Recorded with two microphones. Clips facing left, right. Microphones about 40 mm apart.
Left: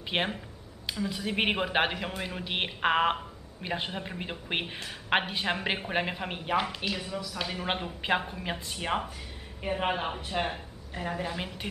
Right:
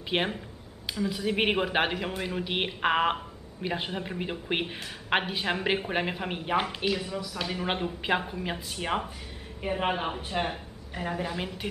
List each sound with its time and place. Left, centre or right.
0.1 s speech: centre
6.5 s speech: centre
7.0 s speech: centre